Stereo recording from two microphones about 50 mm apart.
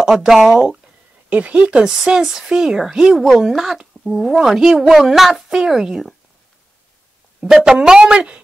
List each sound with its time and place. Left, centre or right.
0.0 s speech: centre
0.5 s speech: centre
7.3 s a woman's voice: centre